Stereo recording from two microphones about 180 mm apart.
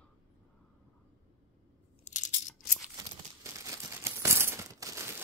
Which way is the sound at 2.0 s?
45° left (ahead or behind).